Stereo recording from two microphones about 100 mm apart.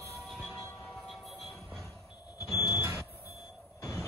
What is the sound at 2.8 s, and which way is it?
Smoke detector, 20° right (ahead or behind).